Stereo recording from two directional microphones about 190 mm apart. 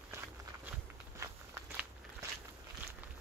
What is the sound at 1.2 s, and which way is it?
Walk, 15° right (ahead or behind).